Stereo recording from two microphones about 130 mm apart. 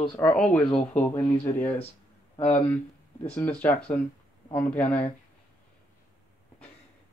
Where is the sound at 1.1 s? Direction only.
20° left (ahead or behind).